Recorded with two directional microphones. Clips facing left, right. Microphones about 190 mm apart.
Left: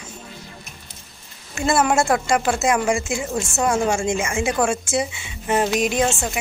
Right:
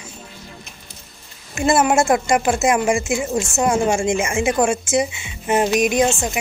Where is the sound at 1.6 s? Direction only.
20° right (ahead or behind).